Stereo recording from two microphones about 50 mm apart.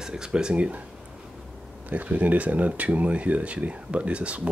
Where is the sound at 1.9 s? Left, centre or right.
Right.